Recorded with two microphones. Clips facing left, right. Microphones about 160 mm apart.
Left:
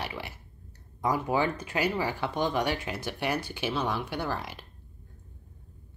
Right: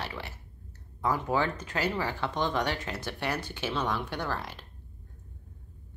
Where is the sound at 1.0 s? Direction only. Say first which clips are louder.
Left 1 dB; 15° left (ahead or behind).